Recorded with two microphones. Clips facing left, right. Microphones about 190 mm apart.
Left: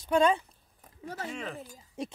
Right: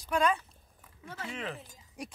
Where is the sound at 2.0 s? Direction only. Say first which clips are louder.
Left 6 dB; 25° left (ahead or behind).